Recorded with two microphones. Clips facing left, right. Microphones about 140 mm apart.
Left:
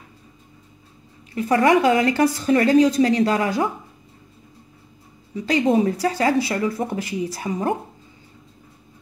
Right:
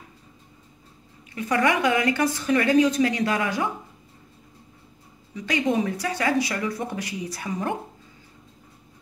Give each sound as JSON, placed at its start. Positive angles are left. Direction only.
{"t": 1.3, "sound": "speech", "side_deg": 30}
{"t": 5.3, "sound": "speech", "side_deg": 35}